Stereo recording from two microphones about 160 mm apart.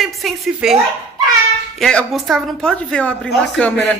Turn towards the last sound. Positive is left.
turn(degrees=10)  # may be behind; listen again after turning